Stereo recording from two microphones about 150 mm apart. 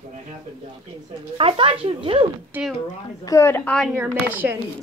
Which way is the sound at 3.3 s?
20° left (ahead or behind).